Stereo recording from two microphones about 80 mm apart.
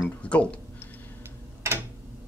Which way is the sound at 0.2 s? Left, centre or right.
Centre.